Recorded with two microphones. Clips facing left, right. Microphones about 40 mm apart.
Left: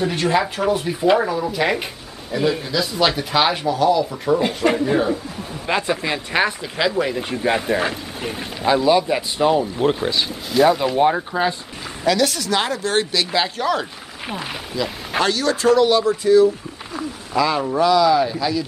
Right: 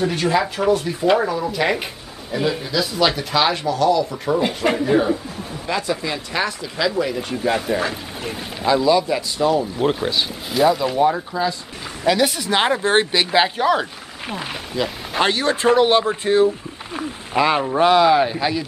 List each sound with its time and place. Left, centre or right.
0.0 s speech: centre
5.7 s speech: left
9.8 s speech: centre
11.0 s speech: left
12.1 s speech: centre
14.2 s speech: centre
15.2 s speech: right